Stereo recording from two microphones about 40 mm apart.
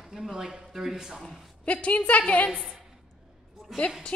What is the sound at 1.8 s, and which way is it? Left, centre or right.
Speech, left.